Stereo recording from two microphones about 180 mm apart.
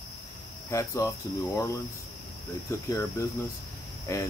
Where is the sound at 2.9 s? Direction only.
15° left (ahead or behind).